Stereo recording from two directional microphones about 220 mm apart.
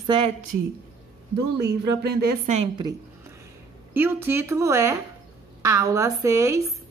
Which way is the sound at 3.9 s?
10° right (ahead or behind).